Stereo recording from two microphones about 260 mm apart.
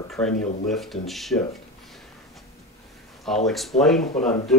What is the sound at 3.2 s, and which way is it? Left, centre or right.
Speech, centre.